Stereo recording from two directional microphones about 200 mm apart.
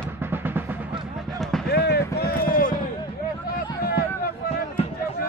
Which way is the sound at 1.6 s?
55° left (ahead or behind).